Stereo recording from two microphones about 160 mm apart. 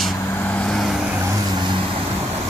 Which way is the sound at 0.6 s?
Centre (ahead or behind).